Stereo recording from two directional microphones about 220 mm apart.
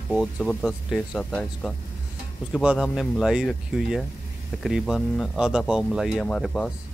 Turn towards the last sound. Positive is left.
turn(degrees=5)  # may be behind; listen again after turning